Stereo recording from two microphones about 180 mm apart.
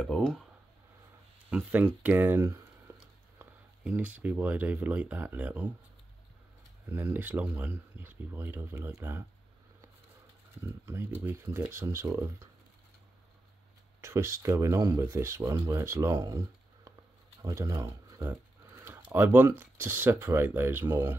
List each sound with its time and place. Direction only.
0.0 s speech: 5° left (ahead or behind)
1.5 s speech: 10° right (ahead or behind)
6.9 s speech: 10° right (ahead or behind)
10.9 s speech: 10° right (ahead or behind)
14.0 s speech: 15° right (ahead or behind)